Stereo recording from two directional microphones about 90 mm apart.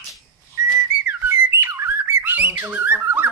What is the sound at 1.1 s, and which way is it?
Bird, 25° right (ahead or behind).